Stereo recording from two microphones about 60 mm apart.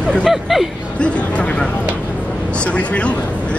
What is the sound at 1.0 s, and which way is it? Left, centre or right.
Speech, centre.